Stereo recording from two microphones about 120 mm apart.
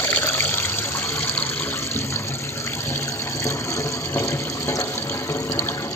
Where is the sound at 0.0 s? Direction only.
20° left (ahead or behind).